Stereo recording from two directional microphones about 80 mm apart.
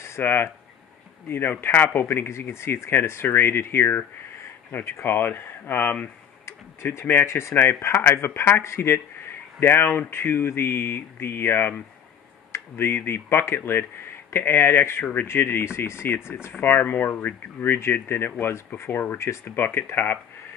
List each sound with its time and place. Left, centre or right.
0.0 s speech: left